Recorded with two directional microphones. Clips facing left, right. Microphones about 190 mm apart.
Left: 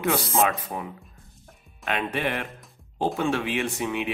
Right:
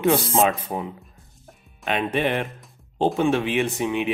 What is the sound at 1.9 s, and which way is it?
Speech, 20° right (ahead or behind).